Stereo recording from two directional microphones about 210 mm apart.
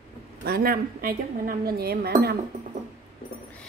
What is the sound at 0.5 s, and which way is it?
Speech, 45° right (ahead or behind).